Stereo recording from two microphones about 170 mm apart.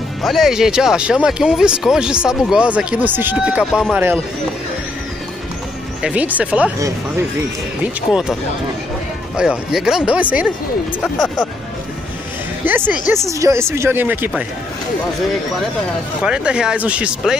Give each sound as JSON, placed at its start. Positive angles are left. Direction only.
{"t": 0.2, "sound": "speech", "side_deg": 0}
{"t": 6.0, "sound": "speech", "side_deg": -10}
{"t": 7.8, "sound": "speech", "side_deg": -5}
{"t": 9.4, "sound": "speech", "side_deg": -5}
{"t": 12.6, "sound": "speech", "side_deg": -10}
{"t": 16.2, "sound": "speech", "side_deg": -5}